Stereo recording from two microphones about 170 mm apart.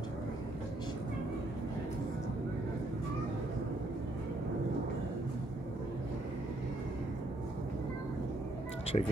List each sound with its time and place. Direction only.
8.9 s speech: 35° left (ahead or behind)